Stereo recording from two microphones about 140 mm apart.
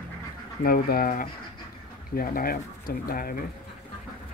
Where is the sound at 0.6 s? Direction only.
90° left.